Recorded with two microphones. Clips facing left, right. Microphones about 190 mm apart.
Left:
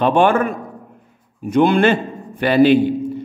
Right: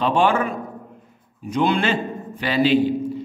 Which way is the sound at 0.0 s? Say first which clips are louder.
Left 4 dB; 55° left (ahead or behind).